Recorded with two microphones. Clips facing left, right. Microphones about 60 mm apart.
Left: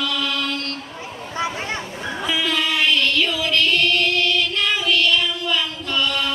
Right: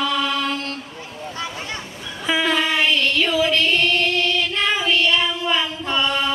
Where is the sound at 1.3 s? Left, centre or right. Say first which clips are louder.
Left 6 dB; left.